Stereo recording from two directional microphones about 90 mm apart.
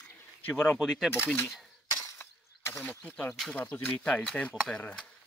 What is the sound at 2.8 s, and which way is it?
Speech, 15° left (ahead or behind).